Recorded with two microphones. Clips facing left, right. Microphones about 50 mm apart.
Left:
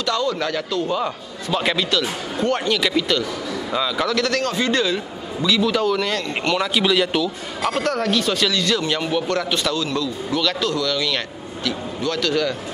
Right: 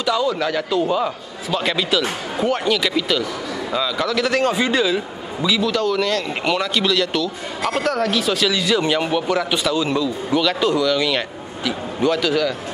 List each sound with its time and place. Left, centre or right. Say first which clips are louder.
0.0 s a man's voice: right 2 dB; centre
1.9 s a man's voice: right 2 dB; centre
4.2 s speech: right 3 dB; centre
5.7 s a man's voice: right 1 dB; centre
7.7 s speech: right 1 dB; centre
9.8 s speech: right 3 dB; centre